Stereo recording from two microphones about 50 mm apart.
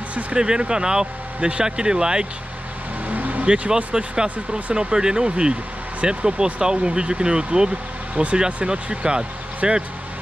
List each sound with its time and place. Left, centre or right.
0.1 s speech: centre
3.1 s vehicle: right
3.4 s speech: right